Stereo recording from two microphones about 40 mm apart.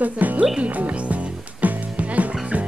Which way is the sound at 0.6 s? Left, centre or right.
Right.